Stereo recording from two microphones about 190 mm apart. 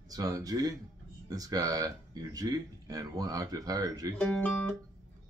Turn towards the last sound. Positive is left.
turn(degrees=5)  # may be behind; listen again after turning